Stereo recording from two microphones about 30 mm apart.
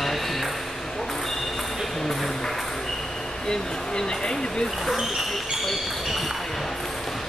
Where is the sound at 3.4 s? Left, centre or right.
Left.